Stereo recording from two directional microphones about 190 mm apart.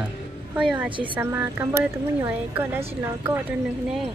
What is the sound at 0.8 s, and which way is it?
Speech, 25° right (ahead or behind).